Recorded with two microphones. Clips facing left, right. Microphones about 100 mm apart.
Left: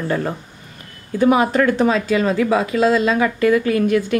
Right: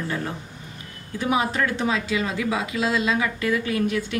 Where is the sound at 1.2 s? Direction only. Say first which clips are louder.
Left 8 dB; 50° left (ahead or behind).